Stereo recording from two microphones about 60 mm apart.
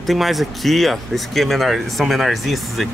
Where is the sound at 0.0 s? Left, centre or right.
Centre.